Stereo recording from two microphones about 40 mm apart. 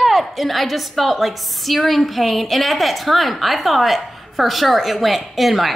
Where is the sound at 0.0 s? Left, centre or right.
Centre.